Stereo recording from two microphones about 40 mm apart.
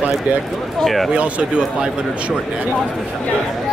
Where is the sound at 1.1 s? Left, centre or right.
Right.